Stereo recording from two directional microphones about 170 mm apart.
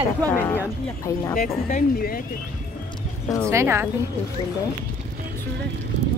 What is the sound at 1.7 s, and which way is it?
Speech, 60° left (ahead or behind).